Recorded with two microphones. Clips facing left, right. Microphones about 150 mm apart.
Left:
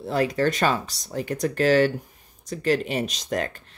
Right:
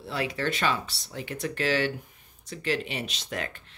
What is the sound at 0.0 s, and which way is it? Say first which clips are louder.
Speech: left 8 dB; 45° left (ahead or behind).